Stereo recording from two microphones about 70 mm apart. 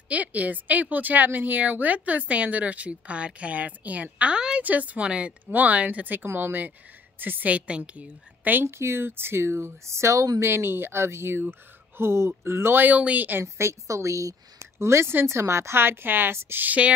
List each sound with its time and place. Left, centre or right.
0.1 s a woman's voice: right
13.4 s speech: right